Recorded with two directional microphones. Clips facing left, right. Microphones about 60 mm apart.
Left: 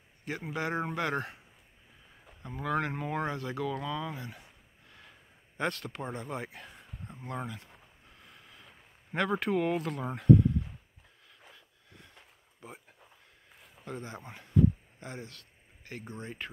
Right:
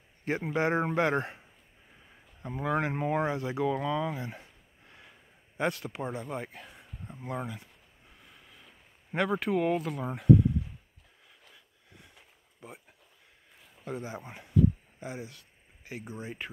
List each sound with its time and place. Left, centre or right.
0.2 s speech: right
2.4 s speech: centre
5.6 s speech: centre
6.2 s speech: centre
8.2 s a sound: centre
11.5 s a sound: centre
13.8 s speech: centre